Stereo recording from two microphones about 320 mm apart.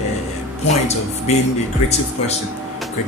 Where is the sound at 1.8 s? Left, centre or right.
Centre.